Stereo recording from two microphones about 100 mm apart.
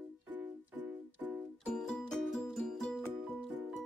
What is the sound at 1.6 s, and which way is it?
Music, 5° left (ahead or behind).